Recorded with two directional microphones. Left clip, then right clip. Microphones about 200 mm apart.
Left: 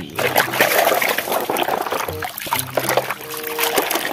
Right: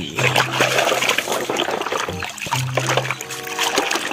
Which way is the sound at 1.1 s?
15° left (ahead or behind).